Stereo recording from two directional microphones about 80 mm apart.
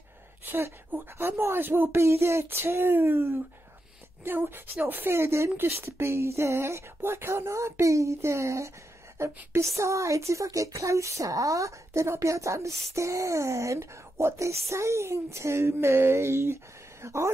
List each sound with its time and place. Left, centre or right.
0.5 s a woman's voice: right